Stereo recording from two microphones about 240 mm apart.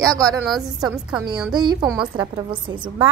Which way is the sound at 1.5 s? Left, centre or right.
Centre.